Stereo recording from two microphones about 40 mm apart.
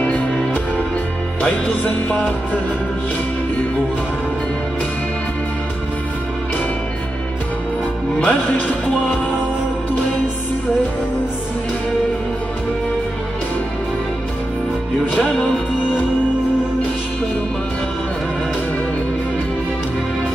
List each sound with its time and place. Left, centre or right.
0.0 s music: left
8.2 s speech: left